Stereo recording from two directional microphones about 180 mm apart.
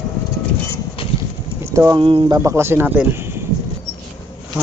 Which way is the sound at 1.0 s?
30° left (ahead or behind).